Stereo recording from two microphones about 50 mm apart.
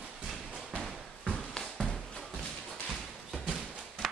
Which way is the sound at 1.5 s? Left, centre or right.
Centre.